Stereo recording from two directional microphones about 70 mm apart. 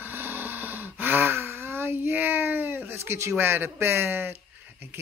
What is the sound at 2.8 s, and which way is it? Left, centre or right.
Speech, right.